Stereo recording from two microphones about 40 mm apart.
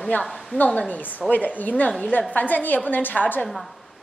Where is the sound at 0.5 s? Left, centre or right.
Left.